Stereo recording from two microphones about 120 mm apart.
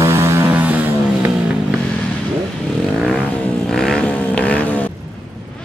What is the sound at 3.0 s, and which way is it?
Vehicle, 10° left (ahead or behind).